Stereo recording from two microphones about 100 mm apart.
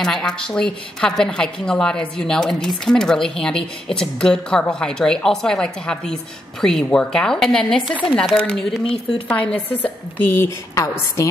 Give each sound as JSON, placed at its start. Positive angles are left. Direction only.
{"t": 0.0, "sound": "speech", "side_deg": 5}
{"t": 9.3, "sound": "a woman's voice", "side_deg": 15}